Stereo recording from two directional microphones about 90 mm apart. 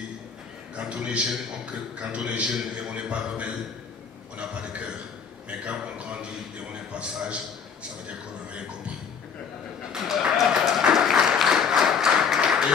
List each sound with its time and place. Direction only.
0.7 s a man's voice: 15° right (ahead or behind)
5.5 s a man's voice: 15° right (ahead or behind)
9.9 s applause: 5° right (ahead or behind)